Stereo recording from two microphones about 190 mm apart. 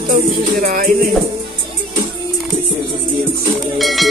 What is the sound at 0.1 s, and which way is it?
Speech, 50° right (ahead or behind).